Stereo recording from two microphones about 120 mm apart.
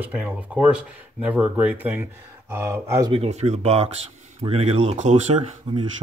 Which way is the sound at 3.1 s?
65° right (ahead or behind).